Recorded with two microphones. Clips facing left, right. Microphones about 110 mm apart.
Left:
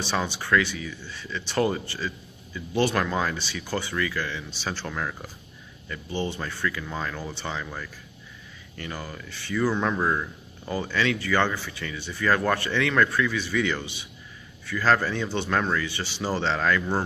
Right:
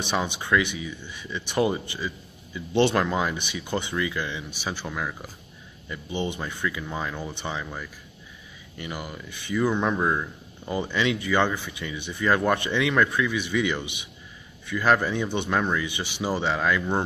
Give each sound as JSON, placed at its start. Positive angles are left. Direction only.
{"t": 0.0, "sound": "speech", "side_deg": -15}
{"t": 2.7, "sound": "speech", "side_deg": -25}